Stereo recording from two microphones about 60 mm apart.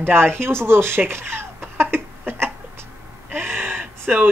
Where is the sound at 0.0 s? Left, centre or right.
Right.